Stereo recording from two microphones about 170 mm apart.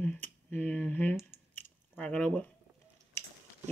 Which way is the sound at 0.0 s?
10° left (ahead or behind).